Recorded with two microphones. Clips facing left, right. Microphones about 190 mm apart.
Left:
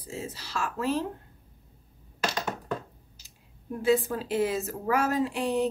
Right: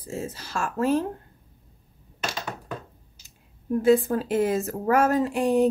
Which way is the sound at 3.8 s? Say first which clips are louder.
Right 5 dB; 50° right (ahead or behind).